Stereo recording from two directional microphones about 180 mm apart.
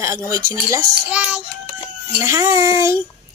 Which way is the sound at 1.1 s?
5° right (ahead or behind).